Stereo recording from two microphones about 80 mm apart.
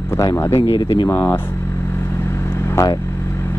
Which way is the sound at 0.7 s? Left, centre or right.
Left.